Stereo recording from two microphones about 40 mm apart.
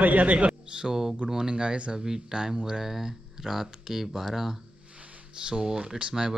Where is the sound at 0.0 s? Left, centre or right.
Right.